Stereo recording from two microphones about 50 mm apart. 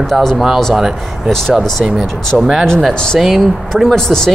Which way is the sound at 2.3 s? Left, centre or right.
Centre.